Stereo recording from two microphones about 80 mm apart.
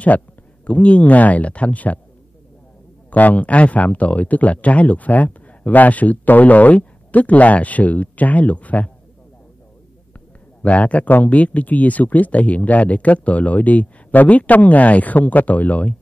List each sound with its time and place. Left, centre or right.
0.7 s speech: centre
3.1 s speech: centre
10.6 s speech: centre